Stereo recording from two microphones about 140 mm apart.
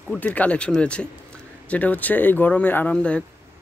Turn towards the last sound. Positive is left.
turn(degrees=10)  # may be behind; listen again after turning